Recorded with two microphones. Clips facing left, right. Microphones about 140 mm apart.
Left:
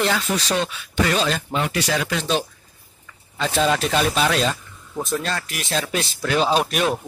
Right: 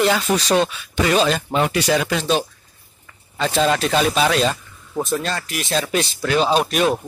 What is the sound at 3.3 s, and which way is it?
Speech, centre (ahead or behind).